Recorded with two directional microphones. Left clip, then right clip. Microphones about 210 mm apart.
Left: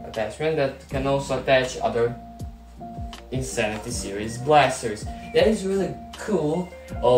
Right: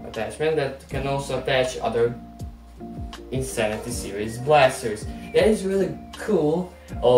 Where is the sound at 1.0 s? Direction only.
20° right (ahead or behind).